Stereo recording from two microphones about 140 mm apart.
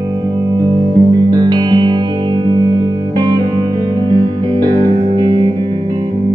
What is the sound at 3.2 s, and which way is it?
Music, 30° right (ahead or behind).